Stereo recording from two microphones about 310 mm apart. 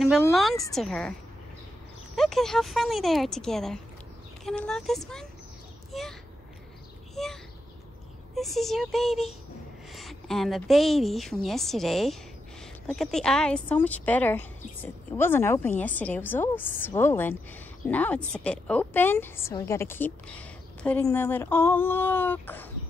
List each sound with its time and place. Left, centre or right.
0.0 s speech: centre
2.1 s speech: centre
5.9 s a sound: centre
8.4 s a woman's voice: centre